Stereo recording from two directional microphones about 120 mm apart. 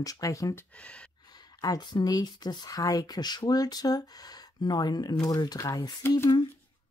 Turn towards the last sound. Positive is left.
turn(degrees=20)  # may be behind; listen again after turning